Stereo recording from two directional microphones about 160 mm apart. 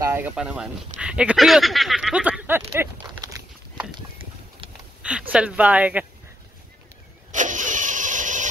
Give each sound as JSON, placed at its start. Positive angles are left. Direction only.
{"t": 0.0, "sound": "a sound", "side_deg": -15}
{"t": 0.4, "sound": "speech", "side_deg": -5}
{"t": 5.0, "sound": "speech", "side_deg": -10}
{"t": 7.3, "sound": "vehicle", "side_deg": -50}